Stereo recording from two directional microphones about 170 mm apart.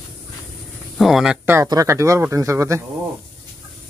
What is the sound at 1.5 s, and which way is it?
Speech, 20° right (ahead or behind).